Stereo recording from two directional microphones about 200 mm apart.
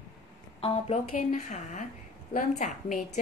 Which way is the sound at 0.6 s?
30° left (ahead or behind).